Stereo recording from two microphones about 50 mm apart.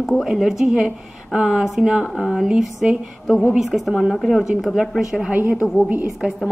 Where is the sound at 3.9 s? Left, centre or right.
Centre.